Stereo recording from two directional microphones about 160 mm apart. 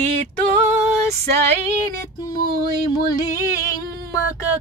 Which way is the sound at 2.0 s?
25° left (ahead or behind).